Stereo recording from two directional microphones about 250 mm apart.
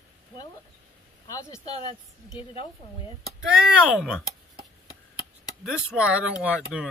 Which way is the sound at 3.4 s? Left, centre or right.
Centre.